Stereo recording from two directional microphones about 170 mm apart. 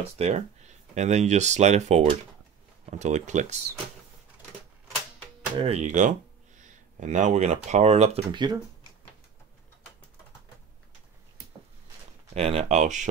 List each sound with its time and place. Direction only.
0.2 s speech: 40° right (ahead or behind)
5.6 s speech: 40° right (ahead or behind)
12.4 s speech: 35° right (ahead or behind)